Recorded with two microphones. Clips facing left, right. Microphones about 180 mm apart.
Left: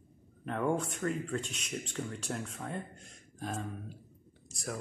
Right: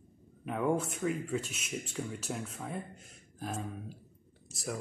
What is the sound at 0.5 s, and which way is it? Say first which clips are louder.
A man's voice: right 1 dB; 5° right (ahead or behind).